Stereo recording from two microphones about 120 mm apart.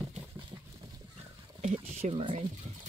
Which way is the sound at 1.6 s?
60° right (ahead or behind).